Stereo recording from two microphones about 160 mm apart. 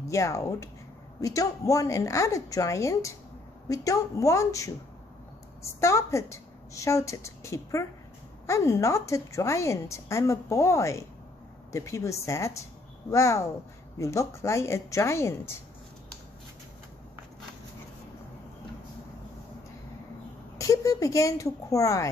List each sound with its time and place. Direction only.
0.1 s a woman's voice: 20° left (ahead or behind)
20.5 s speech: 20° left (ahead or behind)